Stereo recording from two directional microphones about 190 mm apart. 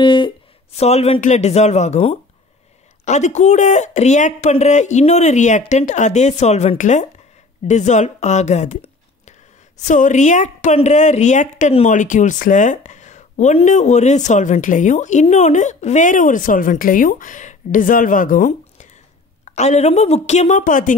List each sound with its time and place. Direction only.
0.0 s a woman's voice: 25° left (ahead or behind); by 20.9 s 45° left (ahead or behind)